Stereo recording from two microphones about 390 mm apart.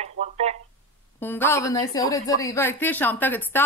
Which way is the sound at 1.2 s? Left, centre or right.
Centre.